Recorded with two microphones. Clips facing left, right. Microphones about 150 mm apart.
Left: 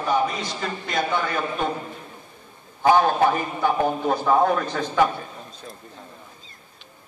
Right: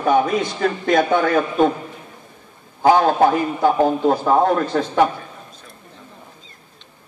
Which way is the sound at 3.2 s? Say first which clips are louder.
Right 5 dB; 35° right (ahead or behind).